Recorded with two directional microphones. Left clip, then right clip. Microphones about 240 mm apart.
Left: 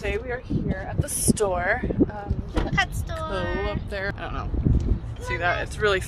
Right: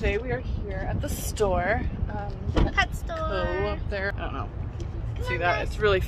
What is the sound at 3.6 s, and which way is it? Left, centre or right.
Speech, centre.